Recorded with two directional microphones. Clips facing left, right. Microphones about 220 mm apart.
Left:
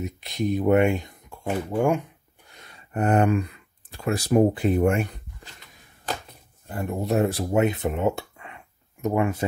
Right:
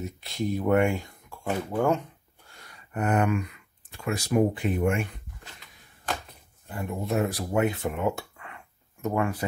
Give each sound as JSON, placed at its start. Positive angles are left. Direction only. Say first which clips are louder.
{"t": 0.0, "sound": "speech", "louder": "left 3 dB", "side_deg": 20}
{"t": 6.7, "sound": "speech", "louder": "left 4 dB", "side_deg": 40}